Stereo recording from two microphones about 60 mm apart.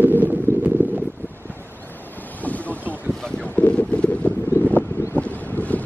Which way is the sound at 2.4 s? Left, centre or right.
Left.